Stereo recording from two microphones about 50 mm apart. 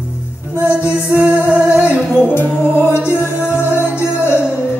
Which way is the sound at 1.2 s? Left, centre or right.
Right.